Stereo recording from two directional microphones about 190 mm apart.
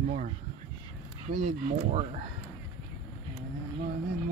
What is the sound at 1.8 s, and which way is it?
Speech, 35° right (ahead or behind).